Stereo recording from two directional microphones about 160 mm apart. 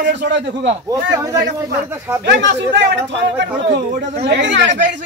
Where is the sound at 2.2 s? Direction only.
90° right.